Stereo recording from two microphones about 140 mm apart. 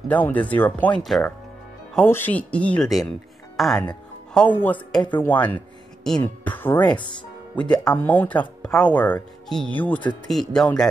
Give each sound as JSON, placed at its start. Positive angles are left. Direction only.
{"t": 0.1, "sound": "speech", "side_deg": 10}
{"t": 2.0, "sound": "speech", "side_deg": 15}
{"t": 7.0, "sound": "speech", "side_deg": 35}
{"t": 7.7, "sound": "speech", "side_deg": 10}